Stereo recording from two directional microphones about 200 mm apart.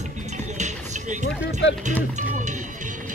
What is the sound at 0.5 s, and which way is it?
Speech, 35° right (ahead or behind).